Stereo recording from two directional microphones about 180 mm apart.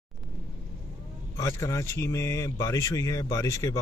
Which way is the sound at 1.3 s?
20° left (ahead or behind).